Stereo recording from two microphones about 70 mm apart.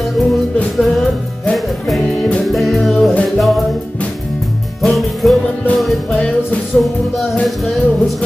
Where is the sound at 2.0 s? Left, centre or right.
Centre.